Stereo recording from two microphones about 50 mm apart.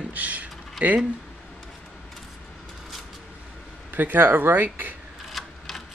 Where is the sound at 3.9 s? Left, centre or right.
Right.